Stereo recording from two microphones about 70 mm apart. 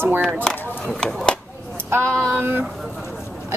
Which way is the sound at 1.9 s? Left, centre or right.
Right.